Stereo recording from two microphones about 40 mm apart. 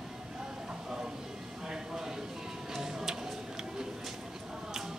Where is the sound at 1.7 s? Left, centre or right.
Centre.